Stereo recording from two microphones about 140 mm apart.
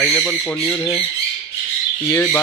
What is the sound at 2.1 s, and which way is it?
Speech, 20° left (ahead or behind).